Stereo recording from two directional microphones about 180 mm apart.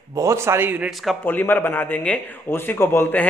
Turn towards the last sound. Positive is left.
turn(degrees=10)  # may be behind; listen again after turning